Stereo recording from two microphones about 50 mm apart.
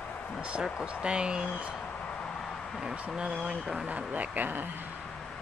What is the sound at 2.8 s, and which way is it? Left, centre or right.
Speech, centre.